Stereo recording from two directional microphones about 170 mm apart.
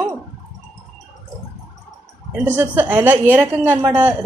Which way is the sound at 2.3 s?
10° right (ahead or behind).